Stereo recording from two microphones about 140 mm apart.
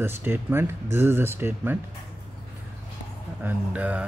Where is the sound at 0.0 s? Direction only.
15° right (ahead or behind).